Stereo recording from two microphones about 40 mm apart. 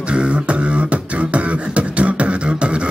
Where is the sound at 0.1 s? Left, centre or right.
Right.